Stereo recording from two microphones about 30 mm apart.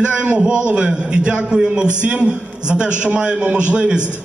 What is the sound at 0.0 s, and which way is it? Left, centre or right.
A man's voice, right.